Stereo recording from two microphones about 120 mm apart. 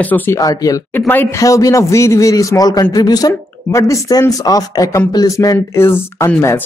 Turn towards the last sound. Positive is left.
turn(degrees=20)  # may be behind; listen again after turning